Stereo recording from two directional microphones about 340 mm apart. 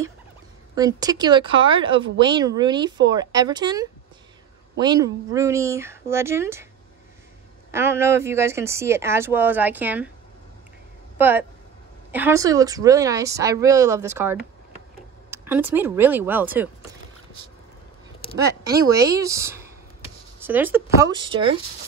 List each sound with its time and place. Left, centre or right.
0.7 s speech: centre
7.7 s speech: centre
11.1 s speech: centre
15.3 s speech: centre
18.2 s a sound: centre
18.9 s speech: centre